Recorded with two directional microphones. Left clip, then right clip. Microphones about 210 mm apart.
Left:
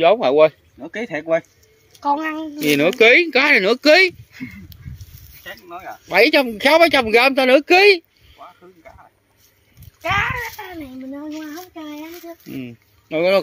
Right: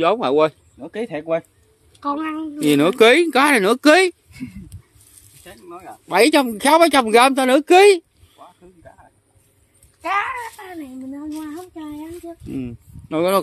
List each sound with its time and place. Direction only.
0.0 s speech: 10° right (ahead or behind)
2.0 s speech: 45° left (ahead or behind)
2.6 s speech: 15° right (ahead or behind)
10.0 s a child's voice: centre (ahead or behind)
12.4 s speech: 15° right (ahead or behind)